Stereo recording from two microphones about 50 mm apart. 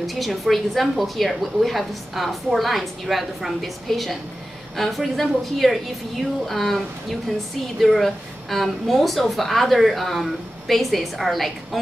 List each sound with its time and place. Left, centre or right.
0.0 s a woman's voice: centre